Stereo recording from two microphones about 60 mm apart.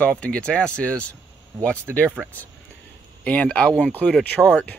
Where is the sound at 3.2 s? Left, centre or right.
Left.